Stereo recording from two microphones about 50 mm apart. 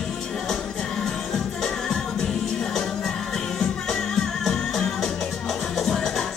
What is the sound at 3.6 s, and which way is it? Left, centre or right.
Music, centre.